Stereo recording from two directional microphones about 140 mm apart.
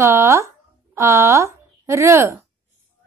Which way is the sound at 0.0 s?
20° right (ahead or behind).